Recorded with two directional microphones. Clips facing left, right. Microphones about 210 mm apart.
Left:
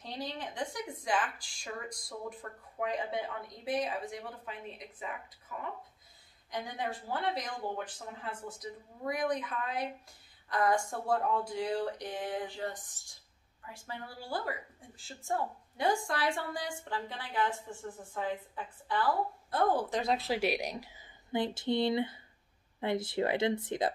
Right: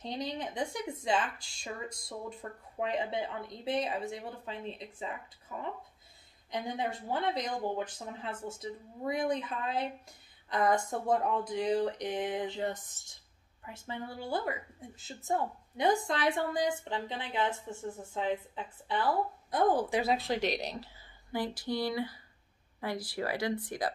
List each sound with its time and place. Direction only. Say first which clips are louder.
0.0 s a woman's voice: right 3 dB; 20° right (ahead or behind); by 23.9 s 25° left (ahead or behind)